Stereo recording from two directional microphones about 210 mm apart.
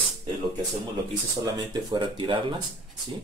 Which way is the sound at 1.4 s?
20° right (ahead or behind).